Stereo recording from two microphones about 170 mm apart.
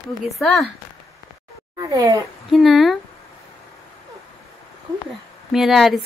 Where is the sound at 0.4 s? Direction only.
Centre (ahead or behind).